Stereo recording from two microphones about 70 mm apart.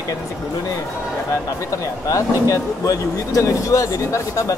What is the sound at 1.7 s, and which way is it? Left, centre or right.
Speech, left.